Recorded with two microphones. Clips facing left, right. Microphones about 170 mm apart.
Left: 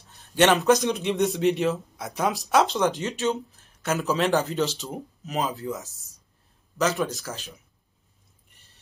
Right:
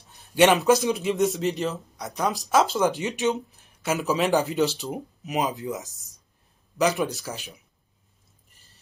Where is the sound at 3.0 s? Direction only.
15° right (ahead or behind).